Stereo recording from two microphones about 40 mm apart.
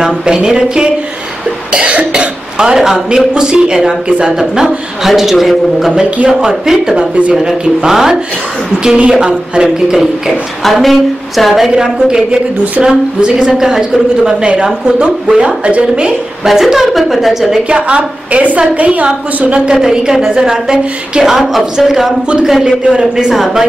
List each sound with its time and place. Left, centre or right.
0.5 s a man's voice: centre
6.0 s a woman's voice: right
6.4 s a man's voice: centre
7.0 s a woman's voice: right
7.3 s a man's voice: centre
8.9 s a woman's voice: right
9.6 s a man's voice: centre
10.6 s a woman's voice: centre
11.7 s a woman's voice: centre
16.4 s a woman's voice: centre
17.6 s a woman's voice: right
19.0 s a woman's voice: right
21.2 s a man's voice: centre
22.7 s a man's voice: right